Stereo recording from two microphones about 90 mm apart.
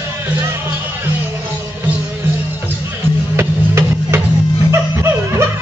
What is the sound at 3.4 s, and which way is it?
Music, 30° right (ahead or behind).